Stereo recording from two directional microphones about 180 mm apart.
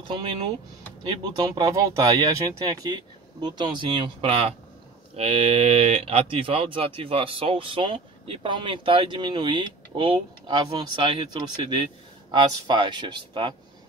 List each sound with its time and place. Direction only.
0.1 s speech: 25° right (ahead or behind)